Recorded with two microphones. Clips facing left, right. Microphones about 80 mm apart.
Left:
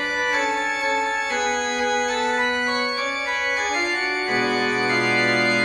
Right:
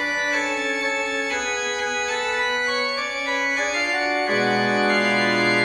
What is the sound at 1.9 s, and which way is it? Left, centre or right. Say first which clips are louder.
Organ: left 3 dB; left.